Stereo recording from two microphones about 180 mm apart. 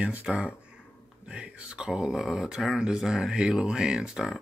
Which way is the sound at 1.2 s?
5° right (ahead or behind).